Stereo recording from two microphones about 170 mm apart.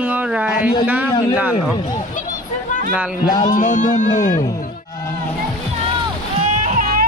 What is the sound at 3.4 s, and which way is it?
Speech, 50° left (ahead or behind).